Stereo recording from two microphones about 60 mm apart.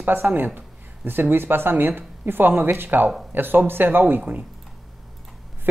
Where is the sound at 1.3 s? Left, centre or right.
Right.